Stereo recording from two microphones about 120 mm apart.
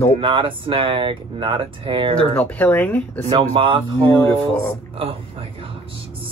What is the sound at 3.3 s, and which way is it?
Speech, 45° right (ahead or behind).